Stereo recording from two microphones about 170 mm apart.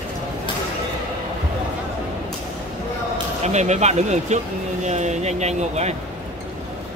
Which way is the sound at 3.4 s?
40° right (ahead or behind).